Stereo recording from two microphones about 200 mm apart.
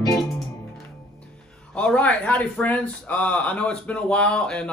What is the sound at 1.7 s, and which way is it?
A man's voice, 5° left (ahead or behind).